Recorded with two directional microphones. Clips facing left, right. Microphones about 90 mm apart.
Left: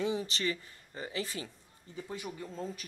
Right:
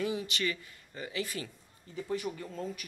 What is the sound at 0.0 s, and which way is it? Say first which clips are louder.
Speech: even; 30° left (ahead or behind).